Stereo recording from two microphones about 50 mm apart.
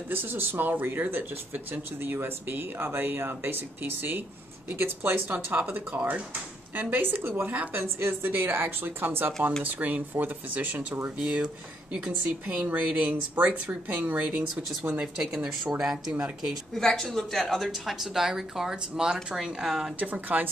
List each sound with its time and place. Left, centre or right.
0.1 s speech: right
6.7 s speech: right
7.5 s speech: right
7.8 s speech: right
11.1 s speech: right
15.1 s speech: centre
16.8 s speech: centre
17.6 s speech: centre
20.0 s speech: right